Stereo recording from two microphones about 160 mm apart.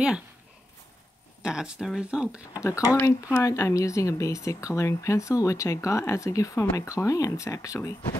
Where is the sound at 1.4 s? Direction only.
5° right (ahead or behind).